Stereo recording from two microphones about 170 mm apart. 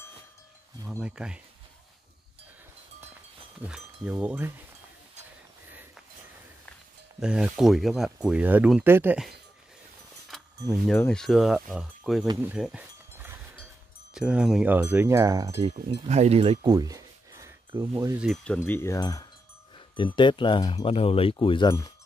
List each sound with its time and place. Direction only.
0.9 s speech: 5° right (ahead or behind)
3.6 s speech: 5° right (ahead or behind)
7.2 s speech: 5° right (ahead or behind)
10.3 s a sound: centre (ahead or behind)
11.0 s speech: 5° left (ahead or behind)
12.4 s a sound: 5° right (ahead or behind)
14.1 s speech: 5° right (ahead or behind)
15.5 s speech: 35° right (ahead or behind)
16.6 s a sound: 20° right (ahead or behind)
17.7 s speech: 15° right (ahead or behind)
18.2 s speech: 5° left (ahead or behind)
18.7 s speech: 15° left (ahead or behind)